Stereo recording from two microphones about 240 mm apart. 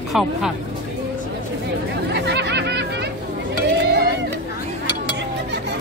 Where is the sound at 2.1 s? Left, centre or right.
Right.